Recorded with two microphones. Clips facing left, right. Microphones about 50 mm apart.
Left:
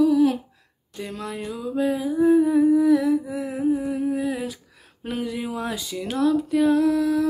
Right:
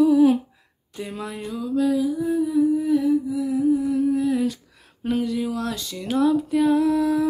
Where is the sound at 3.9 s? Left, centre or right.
Centre.